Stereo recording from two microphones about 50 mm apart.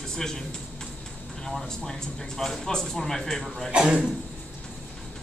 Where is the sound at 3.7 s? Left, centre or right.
Centre.